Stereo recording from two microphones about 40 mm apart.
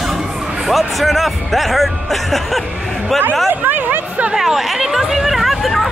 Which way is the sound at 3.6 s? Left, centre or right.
Right.